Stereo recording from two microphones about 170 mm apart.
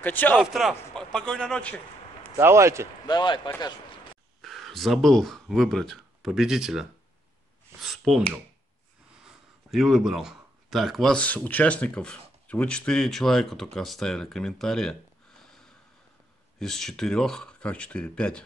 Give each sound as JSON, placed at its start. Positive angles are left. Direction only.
{"t": 0.0, "sound": "a man's voice", "side_deg": 10}
{"t": 0.4, "sound": "speech", "side_deg": 0}
{"t": 2.3, "sound": "speech", "side_deg": -15}
{"t": 3.1, "sound": "speech", "side_deg": 25}
{"t": 4.4, "sound": "speech", "side_deg": 0}
{"t": 7.8, "sound": "a sound", "side_deg": 0}
{"t": 9.2, "sound": "speech", "side_deg": 0}
{"t": 16.5, "sound": "speech", "side_deg": 5}